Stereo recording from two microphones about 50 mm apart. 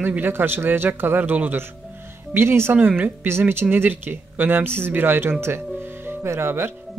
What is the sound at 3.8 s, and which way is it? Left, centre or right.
Speech, right.